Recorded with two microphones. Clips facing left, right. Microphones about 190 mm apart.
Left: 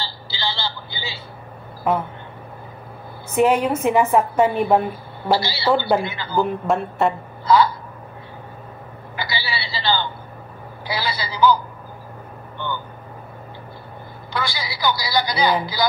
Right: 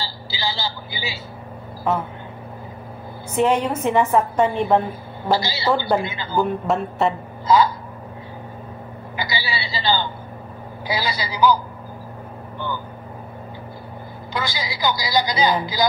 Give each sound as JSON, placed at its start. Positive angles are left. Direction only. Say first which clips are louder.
{"t": 0.0, "sound": "vehicle", "louder": "right 1 dB", "side_deg": -10}
{"t": 3.3, "sound": "a woman's voice", "louder": "left 2 dB", "side_deg": 5}
{"t": 5.3, "sound": "a woman's voice", "louder": "left 1 dB", "side_deg": -15}
{"t": 6.3, "sound": "speech", "louder": "even", "side_deg": 0}
{"t": 7.4, "sound": "a woman's voice", "louder": "even", "side_deg": -15}
{"t": 9.1, "sound": "a woman's voice", "louder": "right 1 dB", "side_deg": -15}
{"t": 14.3, "sound": "a woman's voice", "louder": "even", "side_deg": -20}